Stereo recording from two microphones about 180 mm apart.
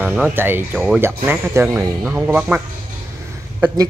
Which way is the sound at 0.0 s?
10° right (ahead or behind).